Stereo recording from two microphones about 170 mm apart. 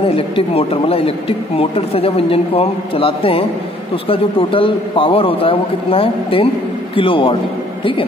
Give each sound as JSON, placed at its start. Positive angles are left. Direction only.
{"t": 0.1, "sound": "a man's voice", "side_deg": 35}